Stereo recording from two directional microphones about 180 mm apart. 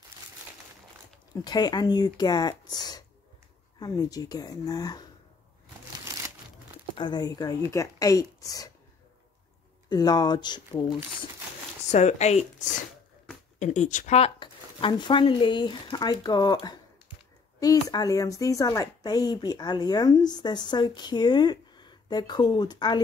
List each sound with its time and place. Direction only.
1.3 s speech: 20° left (ahead or behind)
7.0 s speech: 25° left (ahead or behind)
9.8 s speech: 25° left (ahead or behind)
11.9 s speech: 40° left (ahead or behind); by 23.0 s 25° left (ahead or behind)